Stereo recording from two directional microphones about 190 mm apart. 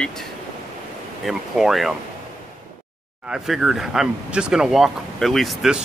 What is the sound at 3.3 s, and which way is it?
Speech, centre (ahead or behind).